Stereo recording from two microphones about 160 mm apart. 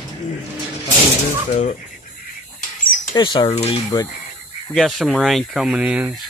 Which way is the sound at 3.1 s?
30° left (ahead or behind).